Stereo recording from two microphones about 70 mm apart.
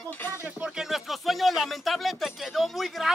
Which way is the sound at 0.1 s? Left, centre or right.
Left.